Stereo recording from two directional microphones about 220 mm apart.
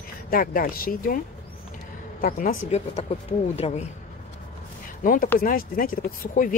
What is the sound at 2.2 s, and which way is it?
Speech, 40° left (ahead or behind).